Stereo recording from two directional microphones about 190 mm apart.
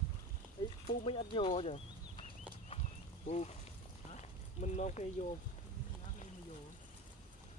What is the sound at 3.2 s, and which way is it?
Speech, 35° left (ahead or behind).